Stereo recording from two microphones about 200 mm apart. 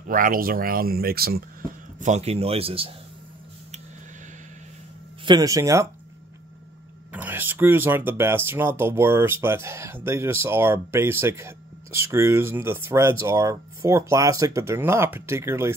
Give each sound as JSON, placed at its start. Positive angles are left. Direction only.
{"t": 0.1, "sound": "speech", "side_deg": -45}
{"t": 2.0, "sound": "a man's voice", "side_deg": -35}
{"t": 5.2, "sound": "speech", "side_deg": -20}
{"t": 7.1, "sound": "speech", "side_deg": -10}